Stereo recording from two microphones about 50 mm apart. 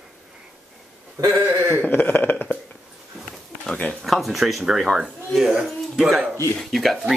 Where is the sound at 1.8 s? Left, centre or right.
Left.